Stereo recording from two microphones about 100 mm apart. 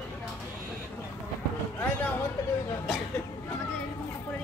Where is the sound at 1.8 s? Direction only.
20° left (ahead or behind).